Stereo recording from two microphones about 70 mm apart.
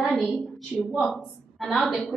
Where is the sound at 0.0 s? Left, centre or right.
Centre.